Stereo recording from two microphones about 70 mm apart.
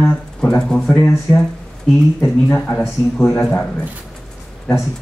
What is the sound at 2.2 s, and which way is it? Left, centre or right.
A man's voice, left.